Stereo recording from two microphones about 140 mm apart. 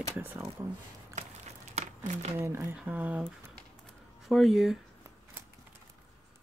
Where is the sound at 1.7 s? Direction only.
55° right (ahead or behind).